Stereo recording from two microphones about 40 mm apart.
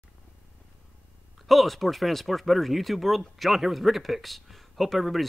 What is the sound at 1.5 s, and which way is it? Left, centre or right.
Speech, centre.